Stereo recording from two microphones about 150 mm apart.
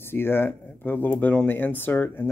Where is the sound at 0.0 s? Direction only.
15° left (ahead or behind).